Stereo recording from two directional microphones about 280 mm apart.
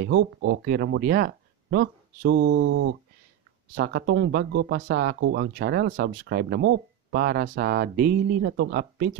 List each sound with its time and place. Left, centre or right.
0.0 s speech: right